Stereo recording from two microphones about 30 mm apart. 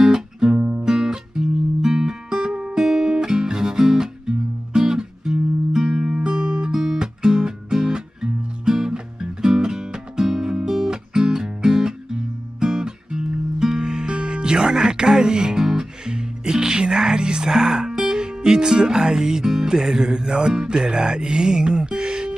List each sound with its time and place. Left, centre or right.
0.0 s music: right
0.6 s music: right
0.8 s music: right
6.7 s music: right